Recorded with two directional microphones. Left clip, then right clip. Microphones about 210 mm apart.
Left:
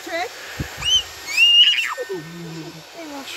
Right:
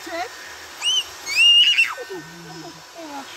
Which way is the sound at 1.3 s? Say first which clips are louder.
Left 1 dB; 5° right (ahead or behind).